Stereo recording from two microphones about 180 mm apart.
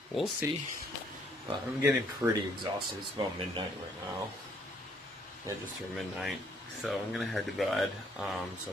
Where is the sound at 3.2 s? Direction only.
30° right (ahead or behind).